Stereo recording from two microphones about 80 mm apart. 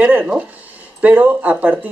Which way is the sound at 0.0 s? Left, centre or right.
Centre.